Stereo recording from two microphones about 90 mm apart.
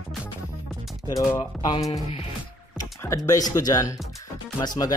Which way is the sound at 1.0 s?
40° left (ahead or behind).